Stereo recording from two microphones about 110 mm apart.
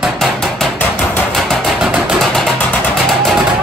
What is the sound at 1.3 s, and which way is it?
Chopping, 5° left (ahead or behind).